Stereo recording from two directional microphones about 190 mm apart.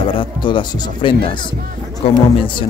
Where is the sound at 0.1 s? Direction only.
25° left (ahead or behind).